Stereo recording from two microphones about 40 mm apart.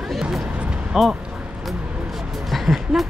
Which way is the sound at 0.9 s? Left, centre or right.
Centre.